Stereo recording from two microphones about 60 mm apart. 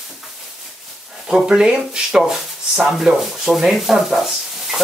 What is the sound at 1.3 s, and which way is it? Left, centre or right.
Speech, centre.